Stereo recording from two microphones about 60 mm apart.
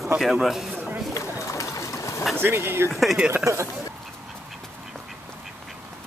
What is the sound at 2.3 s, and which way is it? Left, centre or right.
Speech, right.